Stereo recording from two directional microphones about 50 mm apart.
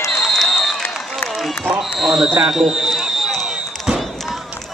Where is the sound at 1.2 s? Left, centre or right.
Centre.